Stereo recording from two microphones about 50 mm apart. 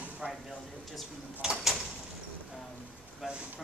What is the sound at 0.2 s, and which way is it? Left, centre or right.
Speech, right.